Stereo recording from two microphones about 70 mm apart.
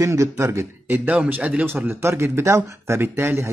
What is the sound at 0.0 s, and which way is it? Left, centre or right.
Speech, right.